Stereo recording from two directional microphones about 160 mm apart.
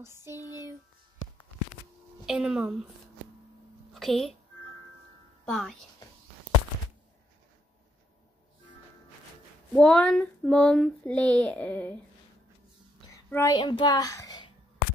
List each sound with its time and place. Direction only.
0.0 s a sound: 15° right (ahead or behind)
2.2 s a woman's voice: 5° right (ahead or behind)
3.9 s a woman's voice: centre (ahead or behind)
5.4 s speech: 5° left (ahead or behind)
9.8 s speech: 5° left (ahead or behind)
13.1 s a sound: 20° left (ahead or behind)
13.6 s a child's voice: 30° left (ahead or behind)